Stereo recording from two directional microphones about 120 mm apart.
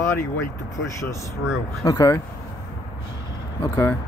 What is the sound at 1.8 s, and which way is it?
Speech, 30° left (ahead or behind).